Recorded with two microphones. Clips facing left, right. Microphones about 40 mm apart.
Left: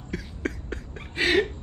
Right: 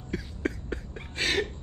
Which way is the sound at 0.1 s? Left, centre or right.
Left.